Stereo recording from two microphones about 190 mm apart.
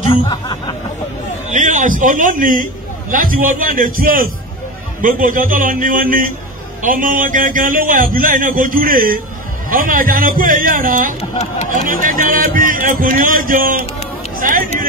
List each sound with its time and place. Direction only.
0.1 s speech: 25° left (ahead or behind)
1.5 s a man's voice: 40° right (ahead or behind)